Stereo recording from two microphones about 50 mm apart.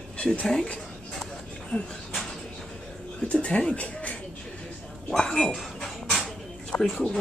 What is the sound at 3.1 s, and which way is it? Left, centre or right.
Speech, left.